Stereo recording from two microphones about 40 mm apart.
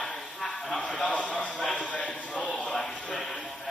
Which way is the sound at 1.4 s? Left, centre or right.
Left.